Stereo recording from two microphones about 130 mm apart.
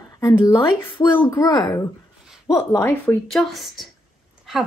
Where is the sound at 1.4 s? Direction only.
30° left (ahead or behind).